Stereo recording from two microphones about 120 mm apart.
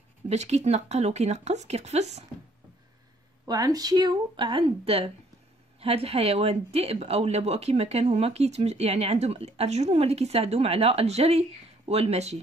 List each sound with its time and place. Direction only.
0.3 s speech: 70° right (ahead or behind)
3.4 s speech: 30° right (ahead or behind); by 12.4 s 60° right (ahead or behind)